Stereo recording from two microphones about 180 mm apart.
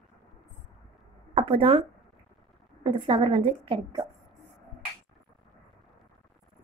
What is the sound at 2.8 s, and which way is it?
A woman's voice, 25° right (ahead or behind).